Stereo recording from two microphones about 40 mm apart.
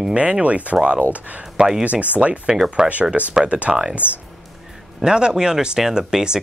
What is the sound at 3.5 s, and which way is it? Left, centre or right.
Speech, right.